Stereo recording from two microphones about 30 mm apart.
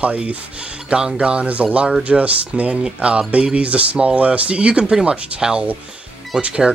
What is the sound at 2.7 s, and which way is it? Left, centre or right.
Speech, right.